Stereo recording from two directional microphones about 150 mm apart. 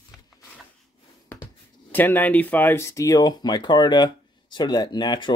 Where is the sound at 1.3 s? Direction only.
15° left (ahead or behind).